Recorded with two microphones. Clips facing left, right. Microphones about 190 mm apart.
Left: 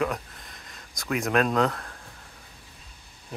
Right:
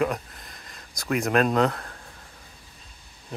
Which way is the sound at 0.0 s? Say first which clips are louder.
Right 2 dB; centre (ahead or behind).